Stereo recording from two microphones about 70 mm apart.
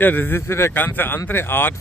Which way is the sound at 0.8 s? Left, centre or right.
Left.